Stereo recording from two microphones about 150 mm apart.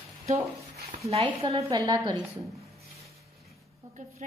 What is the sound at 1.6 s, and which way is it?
Speech, 25° right (ahead or behind).